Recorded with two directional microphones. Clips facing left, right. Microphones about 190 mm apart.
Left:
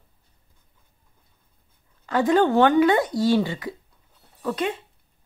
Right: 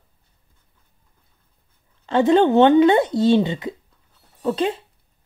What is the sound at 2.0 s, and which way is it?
Speech, 25° right (ahead or behind).